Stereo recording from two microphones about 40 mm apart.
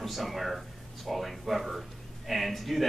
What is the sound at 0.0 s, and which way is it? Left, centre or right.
Speech, centre.